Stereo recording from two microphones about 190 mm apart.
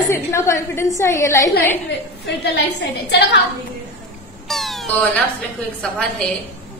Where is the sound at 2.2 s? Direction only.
60° left (ahead or behind).